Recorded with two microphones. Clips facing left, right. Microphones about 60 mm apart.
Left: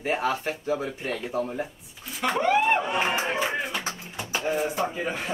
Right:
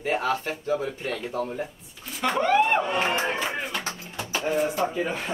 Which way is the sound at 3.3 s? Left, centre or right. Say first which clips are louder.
Left 1 dB; centre.